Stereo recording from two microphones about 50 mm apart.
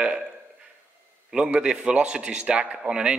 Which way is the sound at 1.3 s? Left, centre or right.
Centre.